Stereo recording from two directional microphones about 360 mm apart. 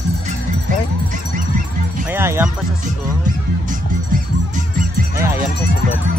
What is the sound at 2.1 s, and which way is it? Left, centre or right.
Speech, centre.